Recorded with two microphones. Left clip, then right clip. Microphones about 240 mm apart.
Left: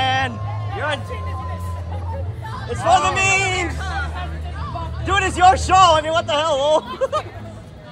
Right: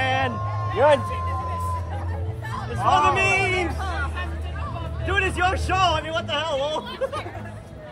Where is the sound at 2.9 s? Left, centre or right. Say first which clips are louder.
Left 3 dB; centre.